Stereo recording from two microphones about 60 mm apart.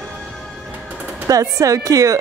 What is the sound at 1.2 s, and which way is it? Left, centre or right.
Speech, right.